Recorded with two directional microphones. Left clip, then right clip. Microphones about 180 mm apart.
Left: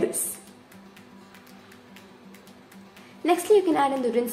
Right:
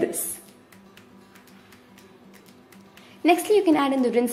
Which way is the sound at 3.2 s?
35° right (ahead or behind).